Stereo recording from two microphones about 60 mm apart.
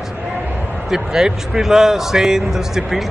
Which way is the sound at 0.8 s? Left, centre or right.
Centre.